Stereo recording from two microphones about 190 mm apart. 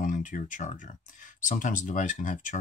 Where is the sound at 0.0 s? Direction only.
40° left (ahead or behind).